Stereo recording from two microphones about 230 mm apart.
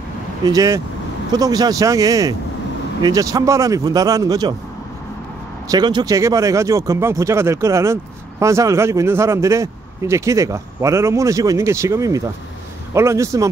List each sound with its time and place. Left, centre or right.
0.5 s speech: centre
5.7 s speech: centre